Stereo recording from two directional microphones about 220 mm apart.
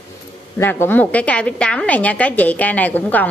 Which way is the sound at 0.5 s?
10° left (ahead or behind).